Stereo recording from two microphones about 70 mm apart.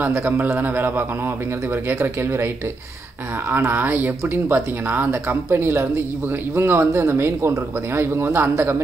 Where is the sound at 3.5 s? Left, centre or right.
Right.